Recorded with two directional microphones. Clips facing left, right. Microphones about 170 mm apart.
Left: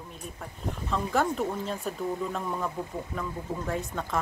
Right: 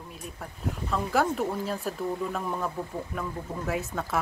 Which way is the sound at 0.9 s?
5° right (ahead or behind).